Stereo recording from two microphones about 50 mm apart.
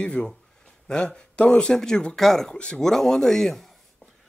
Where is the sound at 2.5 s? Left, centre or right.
Left.